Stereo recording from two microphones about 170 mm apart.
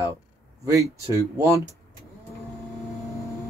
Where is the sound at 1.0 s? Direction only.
20° right (ahead or behind).